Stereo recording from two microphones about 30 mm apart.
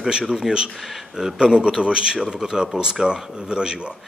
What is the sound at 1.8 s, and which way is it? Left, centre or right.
Speech, right.